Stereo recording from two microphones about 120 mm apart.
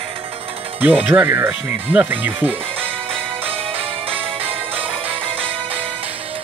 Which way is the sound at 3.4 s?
55° right (ahead or behind).